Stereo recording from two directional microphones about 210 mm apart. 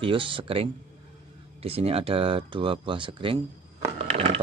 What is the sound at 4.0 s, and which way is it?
Crushing, 30° right (ahead or behind).